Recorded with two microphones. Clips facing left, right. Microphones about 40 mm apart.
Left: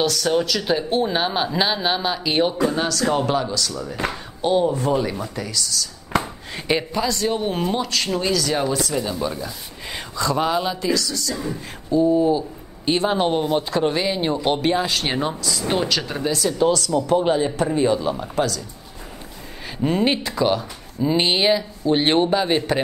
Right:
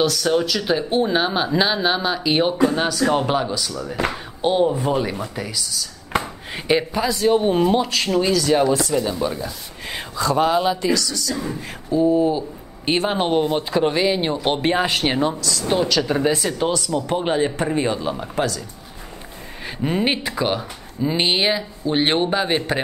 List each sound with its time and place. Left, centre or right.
0.0 s speech: centre
6.1 s a sound: right
6.7 s speech: centre
11.9 s speech: centre
14.7 s speech: right
15.0 s speech: centre
16.1 s speech: right
19.8 s speech: centre